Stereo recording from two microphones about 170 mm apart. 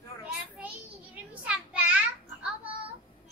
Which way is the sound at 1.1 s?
5° right (ahead or behind).